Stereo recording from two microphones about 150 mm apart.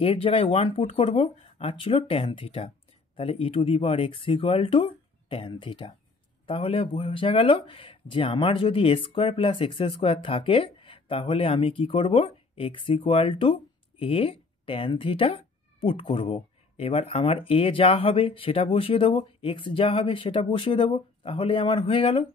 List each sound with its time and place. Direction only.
0.0 s speech: 35° left (ahead or behind)